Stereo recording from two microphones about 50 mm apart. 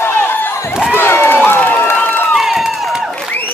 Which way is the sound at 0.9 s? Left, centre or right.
Left.